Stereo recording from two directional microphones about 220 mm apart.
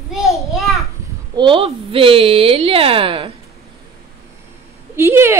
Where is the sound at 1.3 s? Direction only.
20° right (ahead or behind).